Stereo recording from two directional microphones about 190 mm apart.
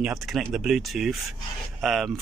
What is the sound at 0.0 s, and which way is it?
Speech, centre (ahead or behind).